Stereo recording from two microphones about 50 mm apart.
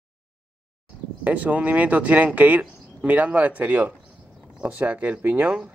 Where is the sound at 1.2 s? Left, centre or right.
Right.